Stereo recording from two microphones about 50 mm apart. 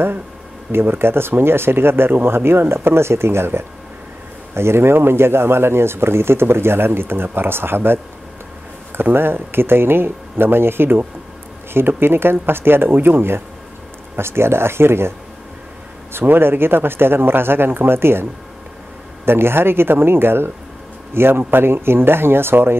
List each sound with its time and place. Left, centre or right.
0.7 s speech: right